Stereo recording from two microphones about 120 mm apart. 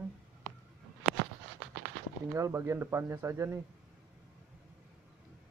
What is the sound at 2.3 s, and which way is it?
Speech, 25° right (ahead or behind).